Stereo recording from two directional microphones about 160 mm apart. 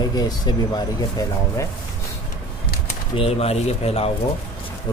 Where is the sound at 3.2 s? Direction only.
40° left (ahead or behind).